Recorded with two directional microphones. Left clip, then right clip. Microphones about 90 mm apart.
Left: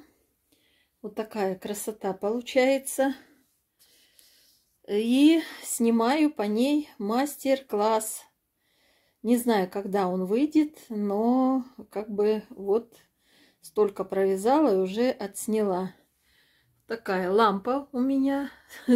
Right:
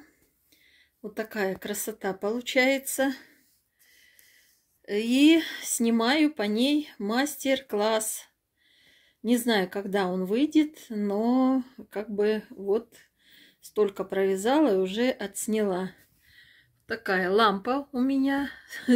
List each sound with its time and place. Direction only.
1.1 s speech: 35° left (ahead or behind)
1.6 s speech: 20° left (ahead or behind)
4.8 s speech: 35° left (ahead or behind)
5.3 s speech: 15° left (ahead or behind)
9.5 s speech: 15° left (ahead or behind)
10.0 s speech: 5° left (ahead or behind)
10.3 s speech: 15° left (ahead or behind)
11.1 s speech: 5° left (ahead or behind)
12.2 s speech: 15° left (ahead or behind)
12.6 s a sound: 15° left (ahead or behind)
13.7 s speech: 5° left (ahead or behind)
16.8 s speech: 5° left (ahead or behind)